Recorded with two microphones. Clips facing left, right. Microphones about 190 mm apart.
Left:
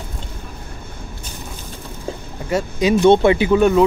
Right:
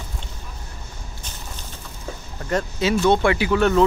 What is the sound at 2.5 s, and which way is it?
Speech, 15° left (ahead or behind).